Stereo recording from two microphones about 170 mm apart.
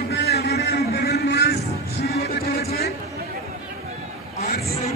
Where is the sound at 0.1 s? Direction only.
75° left (ahead or behind).